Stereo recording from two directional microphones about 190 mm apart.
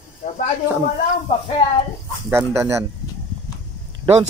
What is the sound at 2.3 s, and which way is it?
Speech, 15° right (ahead or behind).